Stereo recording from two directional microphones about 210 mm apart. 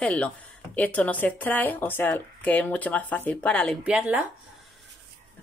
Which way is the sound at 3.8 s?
5° right (ahead or behind).